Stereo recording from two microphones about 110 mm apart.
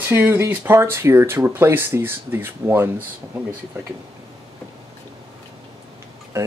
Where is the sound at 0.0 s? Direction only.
20° right (ahead or behind).